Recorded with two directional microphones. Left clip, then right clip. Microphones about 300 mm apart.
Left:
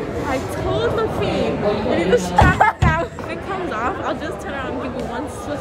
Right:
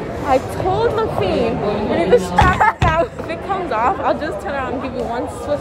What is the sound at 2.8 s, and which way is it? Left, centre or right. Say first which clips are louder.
Music: right 4 dB; centre.